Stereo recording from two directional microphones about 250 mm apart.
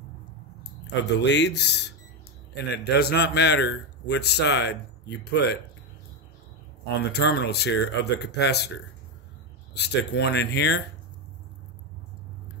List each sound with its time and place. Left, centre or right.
1.1 s a man's voice: left
7.1 s speech: left
9.8 s a man's voice: left